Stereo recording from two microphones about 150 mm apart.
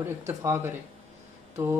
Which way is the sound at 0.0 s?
20° right (ahead or behind).